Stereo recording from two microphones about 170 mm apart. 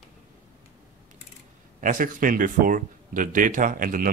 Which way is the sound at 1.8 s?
50° right (ahead or behind).